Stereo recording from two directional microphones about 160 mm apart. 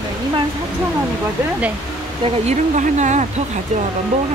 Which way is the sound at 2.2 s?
45° right (ahead or behind).